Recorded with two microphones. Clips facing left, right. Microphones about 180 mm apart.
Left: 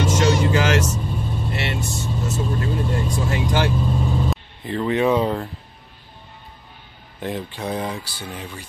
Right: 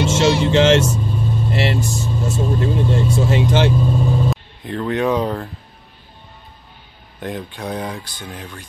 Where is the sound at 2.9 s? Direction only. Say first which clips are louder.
Right 6 dB; 25° right (ahead or behind).